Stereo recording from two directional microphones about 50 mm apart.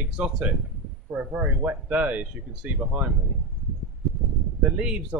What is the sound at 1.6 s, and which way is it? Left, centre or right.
Speech, right.